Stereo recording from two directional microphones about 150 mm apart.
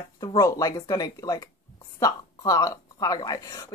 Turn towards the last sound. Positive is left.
turn(degrees=25)  # may be behind; listen again after turning